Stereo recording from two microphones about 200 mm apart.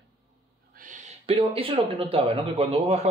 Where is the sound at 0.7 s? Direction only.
40° right (ahead or behind).